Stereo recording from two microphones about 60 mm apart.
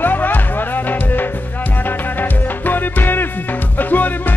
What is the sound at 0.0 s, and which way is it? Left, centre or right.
Music, left.